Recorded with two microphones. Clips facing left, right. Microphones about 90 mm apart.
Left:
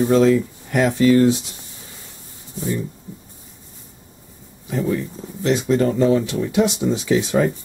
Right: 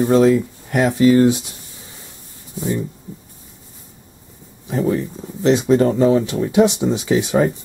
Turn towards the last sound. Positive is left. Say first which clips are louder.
# right 1 dB
turn(degrees=-20)  # may be behind; listen again after turning